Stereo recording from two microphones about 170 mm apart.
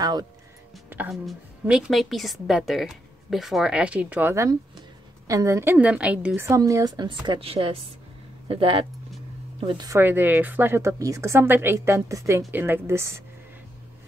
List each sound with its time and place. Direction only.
0.0 s a woman's voice: 25° right (ahead or behind)
0.8 s music: 10° right (ahead or behind)
1.2 s a woman's voice: centre (ahead or behind); by 8.8 s 30° right (ahead or behind)
9.7 s a woman's voice: 20° right (ahead or behind)